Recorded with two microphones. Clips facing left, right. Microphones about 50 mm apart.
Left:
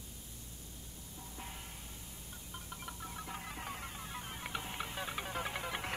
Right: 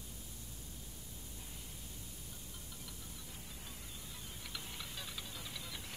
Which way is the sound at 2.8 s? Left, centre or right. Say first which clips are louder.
Left 8 dB; left.